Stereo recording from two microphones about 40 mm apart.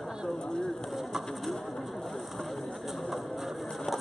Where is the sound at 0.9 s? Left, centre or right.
Centre.